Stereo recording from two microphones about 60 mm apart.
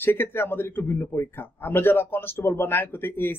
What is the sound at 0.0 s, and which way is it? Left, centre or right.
A man's voice, left.